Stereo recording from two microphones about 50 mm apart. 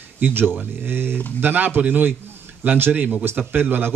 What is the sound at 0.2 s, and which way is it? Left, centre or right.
A man's voice, right.